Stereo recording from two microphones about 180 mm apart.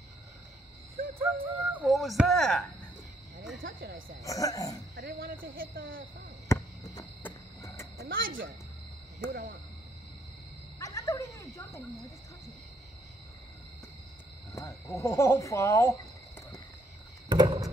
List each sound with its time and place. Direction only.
1.2 s speech: 10° right (ahead or behind)
3.6 s speech: 55° right (ahead or behind)
4.2 s speech: 20° left (ahead or behind)
4.9 s speech: 55° right (ahead or behind)
6.5 s cricket: 15° left (ahead or behind)
8.0 s speech: 55° right (ahead or behind)
10.8 s speech: 15° left (ahead or behind)
14.5 s speech: 15° left (ahead or behind)
17.3 s a sound: 25° right (ahead or behind)